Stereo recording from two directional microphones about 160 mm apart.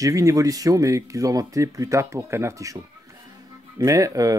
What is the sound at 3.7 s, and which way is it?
Speech, 20° right (ahead or behind).